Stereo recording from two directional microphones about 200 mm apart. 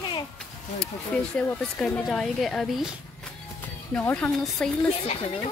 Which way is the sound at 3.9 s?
5° left (ahead or behind).